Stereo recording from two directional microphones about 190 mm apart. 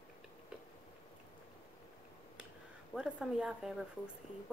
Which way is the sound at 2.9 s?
5° right (ahead or behind).